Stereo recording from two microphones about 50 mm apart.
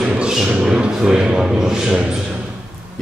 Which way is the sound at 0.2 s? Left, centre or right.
Centre.